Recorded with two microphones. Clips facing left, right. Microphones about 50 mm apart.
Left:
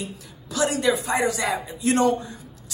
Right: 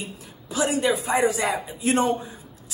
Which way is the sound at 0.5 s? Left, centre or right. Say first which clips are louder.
Left 1 dB; right.